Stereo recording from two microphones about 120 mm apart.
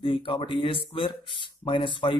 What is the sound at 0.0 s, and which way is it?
Speech, 50° left (ahead or behind).